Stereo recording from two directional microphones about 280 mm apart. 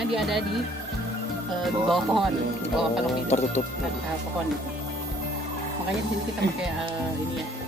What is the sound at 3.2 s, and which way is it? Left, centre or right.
Speech, left.